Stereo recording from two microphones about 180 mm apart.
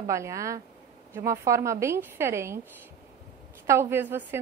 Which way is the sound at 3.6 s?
15° right (ahead or behind).